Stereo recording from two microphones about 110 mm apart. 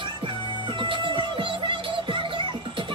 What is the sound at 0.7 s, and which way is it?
Music, 50° right (ahead or behind).